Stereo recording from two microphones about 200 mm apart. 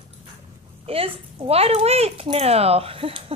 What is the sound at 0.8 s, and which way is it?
Speech, 30° right (ahead or behind).